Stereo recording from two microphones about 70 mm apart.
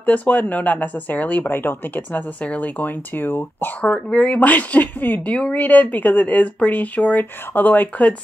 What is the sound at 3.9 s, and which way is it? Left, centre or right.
Speech, centre.